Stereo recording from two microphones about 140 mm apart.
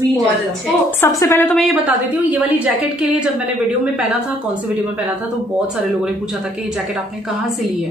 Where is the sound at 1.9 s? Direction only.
10° right (ahead or behind).